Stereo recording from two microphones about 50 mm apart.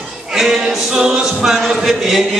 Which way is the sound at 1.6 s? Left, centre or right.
Centre.